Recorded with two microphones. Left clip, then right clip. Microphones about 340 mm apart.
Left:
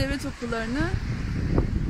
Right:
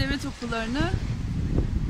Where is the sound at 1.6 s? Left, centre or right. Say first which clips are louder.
Left 5 dB; left.